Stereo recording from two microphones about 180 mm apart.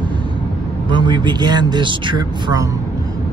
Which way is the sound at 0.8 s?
25° right (ahead or behind).